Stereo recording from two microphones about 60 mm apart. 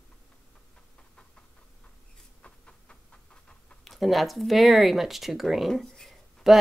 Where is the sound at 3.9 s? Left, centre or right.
Centre.